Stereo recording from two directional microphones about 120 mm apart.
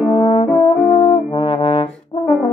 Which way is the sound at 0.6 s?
40° left (ahead or behind).